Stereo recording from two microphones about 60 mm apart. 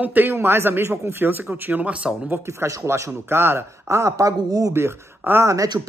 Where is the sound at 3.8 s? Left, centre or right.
Right.